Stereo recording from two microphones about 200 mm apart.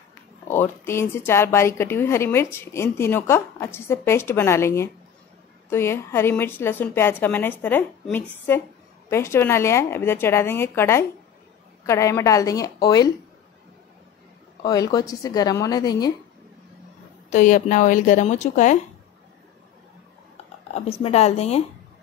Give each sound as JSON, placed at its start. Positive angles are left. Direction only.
{"t": 0.5, "sound": "a woman's voice", "side_deg": 10}
{"t": 14.6, "sound": "a woman's voice", "side_deg": 20}
{"t": 17.3, "sound": "speech", "side_deg": 40}
{"t": 20.7, "sound": "speech", "side_deg": 30}